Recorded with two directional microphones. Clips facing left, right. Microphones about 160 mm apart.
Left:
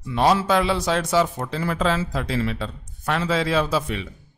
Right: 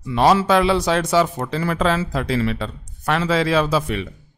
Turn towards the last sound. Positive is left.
turn(degrees=-70)  # may be behind; listen again after turning